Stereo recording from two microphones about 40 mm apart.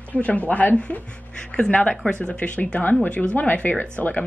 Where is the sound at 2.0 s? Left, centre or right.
Left.